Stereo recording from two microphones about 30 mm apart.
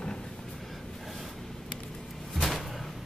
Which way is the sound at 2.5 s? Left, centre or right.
Centre.